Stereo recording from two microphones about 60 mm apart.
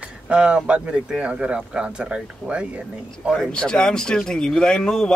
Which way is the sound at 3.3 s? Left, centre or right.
Centre.